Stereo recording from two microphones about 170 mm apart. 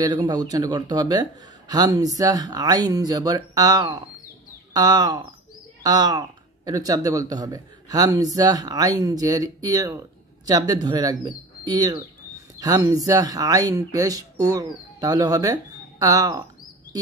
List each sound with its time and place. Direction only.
0.0 s speech: 20° right (ahead or behind)